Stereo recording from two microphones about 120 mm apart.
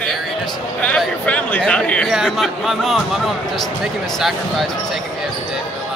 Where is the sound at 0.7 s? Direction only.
10° left (ahead or behind).